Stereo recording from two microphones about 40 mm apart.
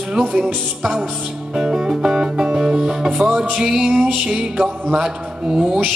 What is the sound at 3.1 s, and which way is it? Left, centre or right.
Music, right.